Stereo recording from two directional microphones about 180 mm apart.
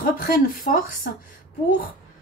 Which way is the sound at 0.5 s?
50° left (ahead or behind).